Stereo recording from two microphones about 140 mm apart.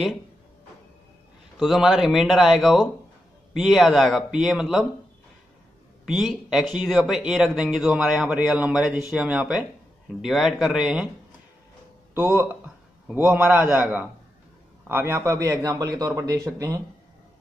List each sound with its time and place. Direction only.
1.6 s speech: centre (ahead or behind)
6.0 s speech: centre (ahead or behind)
12.4 s a man's voice: 15° right (ahead or behind)